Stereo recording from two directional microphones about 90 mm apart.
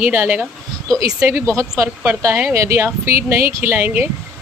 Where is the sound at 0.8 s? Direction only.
40° right (ahead or behind).